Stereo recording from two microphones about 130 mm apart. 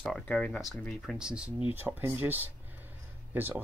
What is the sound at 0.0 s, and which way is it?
Speech, 10° left (ahead or behind).